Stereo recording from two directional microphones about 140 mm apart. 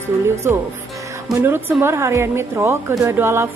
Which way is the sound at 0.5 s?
15° right (ahead or behind).